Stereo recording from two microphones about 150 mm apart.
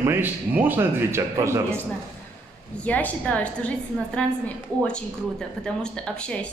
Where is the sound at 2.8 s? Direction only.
10° left (ahead or behind).